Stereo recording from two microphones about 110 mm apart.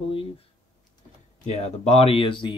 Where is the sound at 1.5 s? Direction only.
75° left (ahead or behind); by 2.6 s 45° left (ahead or behind).